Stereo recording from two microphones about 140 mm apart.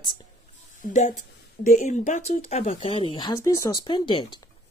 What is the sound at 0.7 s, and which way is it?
Speech, 65° left (ahead or behind).